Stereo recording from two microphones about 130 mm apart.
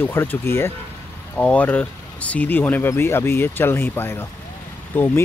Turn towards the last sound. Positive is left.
turn(degrees=15)  # may be behind; listen again after turning